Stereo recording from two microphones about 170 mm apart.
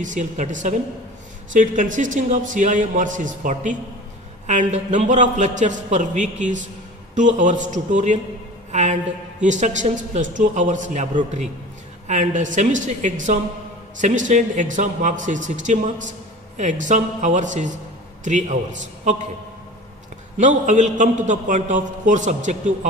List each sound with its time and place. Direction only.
0.0 s a man's voice: 45° right (ahead or behind)
9.4 s a man's voice: 45° right (ahead or behind)
20.3 s a man's voice: 45° right (ahead or behind)